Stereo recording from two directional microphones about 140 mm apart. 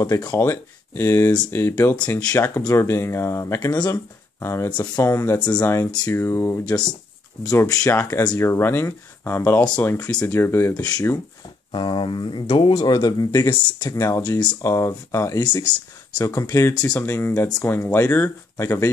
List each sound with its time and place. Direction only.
0.0 s speech: 25° left (ahead or behind)
2.3 s speech: 20° left (ahead or behind)
13.9 s speech: 20° left (ahead or behind)
14.6 s speech: 20° left (ahead or behind)